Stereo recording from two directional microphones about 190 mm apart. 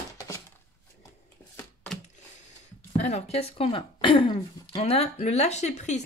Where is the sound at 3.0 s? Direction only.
35° left (ahead or behind).